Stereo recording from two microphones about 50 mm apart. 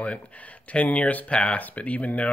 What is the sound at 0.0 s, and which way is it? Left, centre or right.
Speech, left.